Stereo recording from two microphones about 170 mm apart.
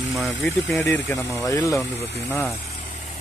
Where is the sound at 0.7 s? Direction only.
10° left (ahead or behind).